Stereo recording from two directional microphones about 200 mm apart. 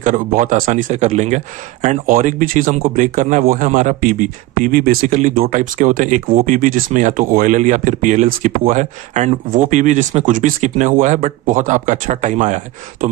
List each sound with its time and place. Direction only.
0.0 s speech: 40° right (ahead or behind)